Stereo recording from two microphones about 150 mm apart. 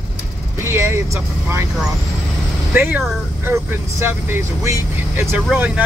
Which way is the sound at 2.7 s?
10° right (ahead or behind).